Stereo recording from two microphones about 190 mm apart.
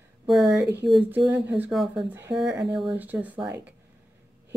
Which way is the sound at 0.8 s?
Centre (ahead or behind).